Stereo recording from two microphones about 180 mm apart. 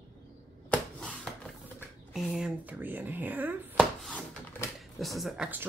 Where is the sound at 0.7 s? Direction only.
5° left (ahead or behind).